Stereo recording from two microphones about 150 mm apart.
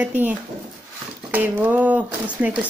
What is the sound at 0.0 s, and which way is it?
Speech, 10° right (ahead or behind).